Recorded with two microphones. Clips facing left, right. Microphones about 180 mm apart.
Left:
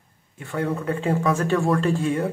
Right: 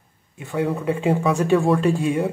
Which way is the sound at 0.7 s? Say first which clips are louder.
Right 2 dB; centre (ahead or behind).